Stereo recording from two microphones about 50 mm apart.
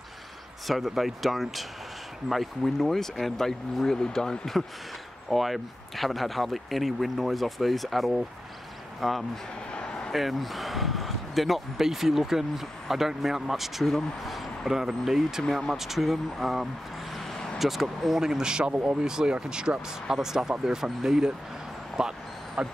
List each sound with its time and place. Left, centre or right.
0.7 s speech: centre
5.3 s speech: centre
9.8 s a sound: centre
10.1 s speech: centre
17.1 s vehicle: centre
17.6 s speech: centre
18.7 s speech: right
19.0 s speech: centre